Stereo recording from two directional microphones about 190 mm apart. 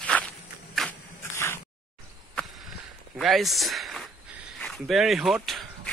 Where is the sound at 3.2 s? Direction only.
Centre (ahead or behind).